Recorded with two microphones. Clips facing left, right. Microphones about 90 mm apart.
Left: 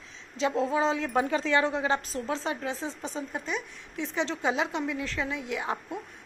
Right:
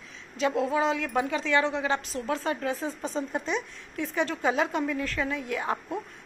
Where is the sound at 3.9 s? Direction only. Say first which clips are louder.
Right 2 dB; 20° left (ahead or behind).